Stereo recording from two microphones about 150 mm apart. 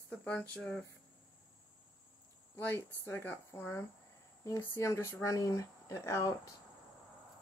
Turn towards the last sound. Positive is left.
turn(degrees=20)  # may be behind; listen again after turning